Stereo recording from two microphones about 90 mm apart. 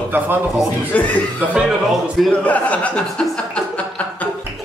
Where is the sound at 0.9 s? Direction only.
15° left (ahead or behind).